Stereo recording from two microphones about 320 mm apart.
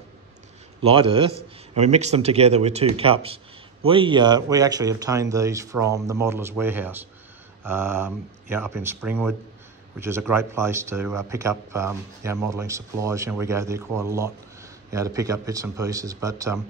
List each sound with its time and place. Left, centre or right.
0.8 s speech: centre